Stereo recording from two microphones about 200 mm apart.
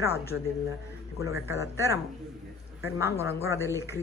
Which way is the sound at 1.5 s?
15° right (ahead or behind).